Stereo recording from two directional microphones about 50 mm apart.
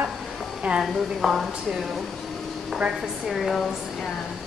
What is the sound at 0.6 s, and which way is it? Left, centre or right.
Speech, right.